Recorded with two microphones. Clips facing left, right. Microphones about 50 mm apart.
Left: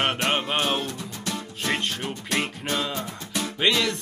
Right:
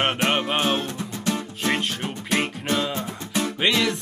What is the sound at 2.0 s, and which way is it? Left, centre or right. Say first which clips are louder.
Music: right 2 dB; centre.